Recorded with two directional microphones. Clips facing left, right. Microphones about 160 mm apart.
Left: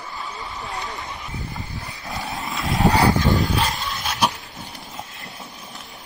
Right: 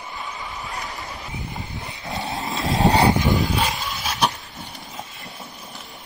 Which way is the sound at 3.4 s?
Centre (ahead or behind).